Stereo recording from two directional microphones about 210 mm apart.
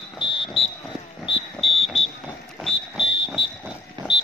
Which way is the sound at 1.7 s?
30° left (ahead or behind).